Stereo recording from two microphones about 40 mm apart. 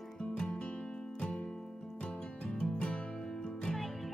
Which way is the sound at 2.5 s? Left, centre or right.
Left.